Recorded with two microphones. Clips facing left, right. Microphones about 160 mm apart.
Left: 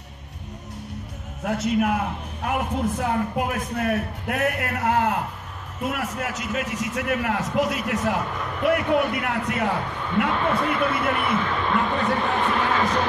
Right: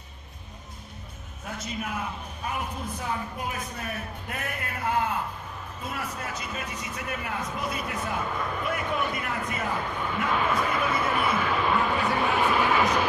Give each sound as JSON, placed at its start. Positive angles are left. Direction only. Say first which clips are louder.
{"t": 1.4, "sound": "a man's voice", "louder": "left 12 dB", "side_deg": 65}
{"t": 8.6, "sound": "a man's voice", "louder": "left 12 dB", "side_deg": 70}
{"t": 10.6, "sound": "a man's voice", "louder": "left 3 dB", "side_deg": -5}